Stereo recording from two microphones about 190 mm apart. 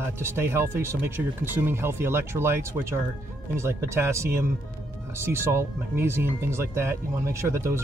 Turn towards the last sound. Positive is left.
turn(degrees=-15)  # may be behind; listen again after turning